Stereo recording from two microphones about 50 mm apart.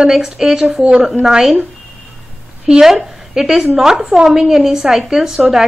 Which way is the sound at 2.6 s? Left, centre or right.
Centre.